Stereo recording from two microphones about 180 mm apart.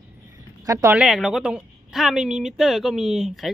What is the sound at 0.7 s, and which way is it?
Speech, 15° right (ahead or behind).